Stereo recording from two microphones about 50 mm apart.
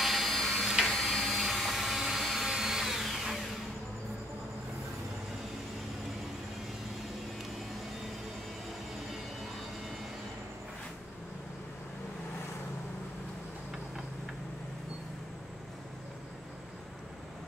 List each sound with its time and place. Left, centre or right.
0.0 s a sound: centre
0.8 s printer: centre
1.3 s drill: centre